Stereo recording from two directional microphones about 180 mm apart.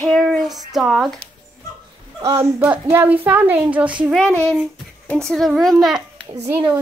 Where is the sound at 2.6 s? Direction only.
10° right (ahead or behind).